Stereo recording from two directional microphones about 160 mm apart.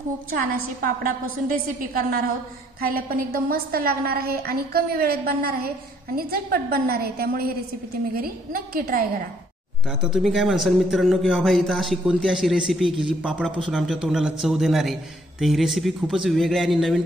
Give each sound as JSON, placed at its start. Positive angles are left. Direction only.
{"t": 0.5, "sound": "a woman's voice", "side_deg": -60}
{"t": 9.8, "sound": "a man's voice", "side_deg": -5}